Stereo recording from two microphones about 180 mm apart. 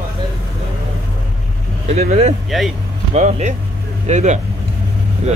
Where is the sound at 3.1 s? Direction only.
40° right (ahead or behind).